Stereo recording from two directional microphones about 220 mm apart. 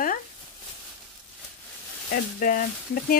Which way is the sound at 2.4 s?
40° left (ahead or behind).